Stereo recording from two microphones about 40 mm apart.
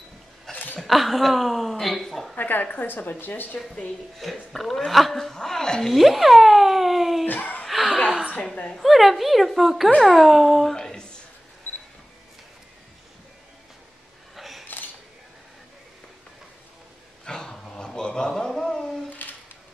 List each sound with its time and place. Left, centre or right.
0.7 s a woman's voice: centre
2.3 s a woman's voice: left
4.5 s a woman's voice: centre
5.9 s a woman's voice: centre
7.2 s speech: left
7.6 s chuckle: centre
8.7 s a woman's voice: centre
10.7 s a sound: centre
14.3 s a sound: centre
17.2 s a sound: centre